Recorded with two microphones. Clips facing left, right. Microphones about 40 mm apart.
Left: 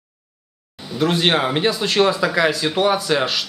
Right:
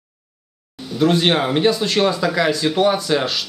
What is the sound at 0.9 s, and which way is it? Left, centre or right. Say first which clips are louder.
Speech: right 2 dB; centre.